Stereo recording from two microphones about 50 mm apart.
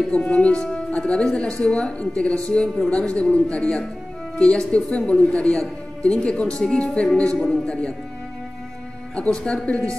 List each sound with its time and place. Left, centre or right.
0.1 s a man's voice: left
9.1 s speech: left